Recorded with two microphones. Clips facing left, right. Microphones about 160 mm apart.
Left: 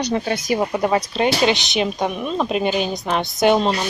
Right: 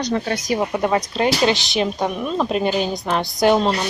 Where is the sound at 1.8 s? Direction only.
10° left (ahead or behind).